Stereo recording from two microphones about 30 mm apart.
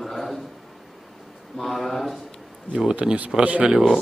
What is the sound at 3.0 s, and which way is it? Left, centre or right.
Speech, right.